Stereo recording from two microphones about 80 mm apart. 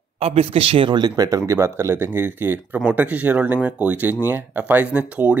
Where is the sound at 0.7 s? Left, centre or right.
Right.